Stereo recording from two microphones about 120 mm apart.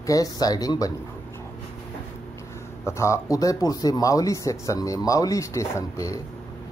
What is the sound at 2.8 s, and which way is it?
Speech, 25° left (ahead or behind).